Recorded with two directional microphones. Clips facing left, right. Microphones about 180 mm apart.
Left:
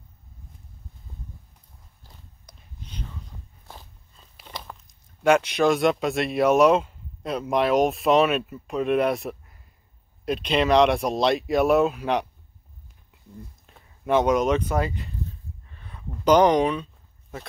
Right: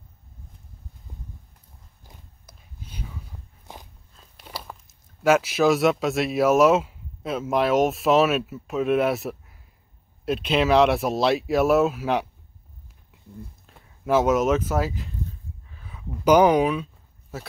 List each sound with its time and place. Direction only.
2.4 s whispering: 5° right (ahead or behind)
3.7 s walk: 15° right (ahead or behind)
4.1 s speech: centre (ahead or behind)
13.7 s speech: centre (ahead or behind)
15.6 s a sound: 5° right (ahead or behind)